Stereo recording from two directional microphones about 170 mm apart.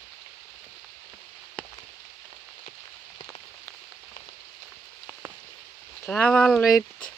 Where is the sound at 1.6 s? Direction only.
5° left (ahead or behind).